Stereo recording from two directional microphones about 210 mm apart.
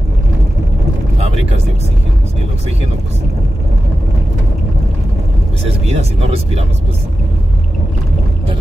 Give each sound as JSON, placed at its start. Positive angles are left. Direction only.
{"t": 5.7, "sound": "speech", "side_deg": -30}